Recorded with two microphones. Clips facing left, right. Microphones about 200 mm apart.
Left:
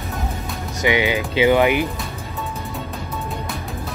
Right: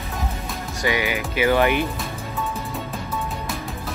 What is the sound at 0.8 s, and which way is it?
Speech, 20° left (ahead or behind).